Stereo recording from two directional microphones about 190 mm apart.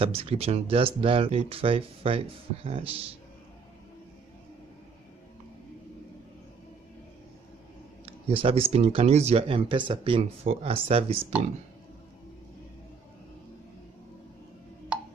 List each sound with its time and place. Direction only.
0.0 s speech: 30° right (ahead or behind)
8.0 s speech: 30° right (ahead or behind)
14.9 s a sound: 5° right (ahead or behind)